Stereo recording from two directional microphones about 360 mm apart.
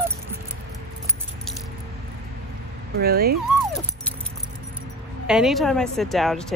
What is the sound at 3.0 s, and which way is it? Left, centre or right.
Speech, right.